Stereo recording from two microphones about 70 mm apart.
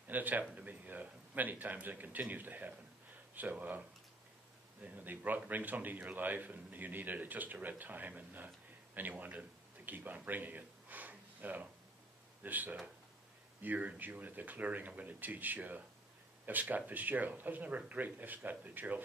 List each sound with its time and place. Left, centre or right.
0.1 s a man's voice: right
4.8 s a man's voice: right